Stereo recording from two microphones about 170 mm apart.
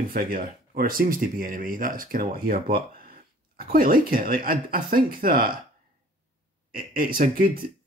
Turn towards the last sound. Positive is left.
turn(degrees=-55)  # may be behind; listen again after turning